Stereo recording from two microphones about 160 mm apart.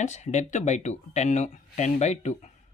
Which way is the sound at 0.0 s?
50° left (ahead or behind).